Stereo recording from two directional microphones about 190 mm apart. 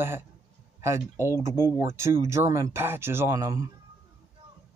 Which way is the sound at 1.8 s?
15° right (ahead or behind).